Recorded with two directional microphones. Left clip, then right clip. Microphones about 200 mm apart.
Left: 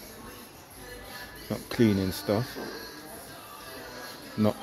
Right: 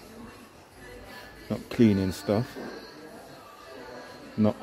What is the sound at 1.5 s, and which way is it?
Speech, 20° right (ahead or behind).